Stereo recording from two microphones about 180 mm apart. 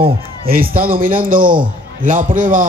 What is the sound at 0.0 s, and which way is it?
A man's voice, 55° right (ahead or behind).